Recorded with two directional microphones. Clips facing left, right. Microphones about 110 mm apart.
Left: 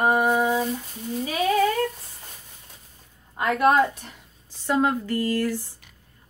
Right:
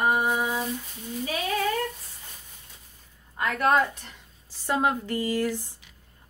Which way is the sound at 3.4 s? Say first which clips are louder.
Left 4 dB; 15° left (ahead or behind).